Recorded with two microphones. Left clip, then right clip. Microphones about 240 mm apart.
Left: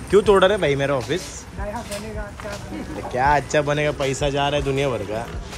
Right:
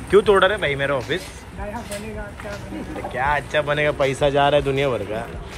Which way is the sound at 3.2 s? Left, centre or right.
Left.